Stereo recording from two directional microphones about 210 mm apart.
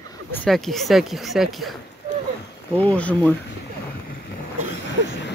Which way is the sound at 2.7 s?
5° left (ahead or behind).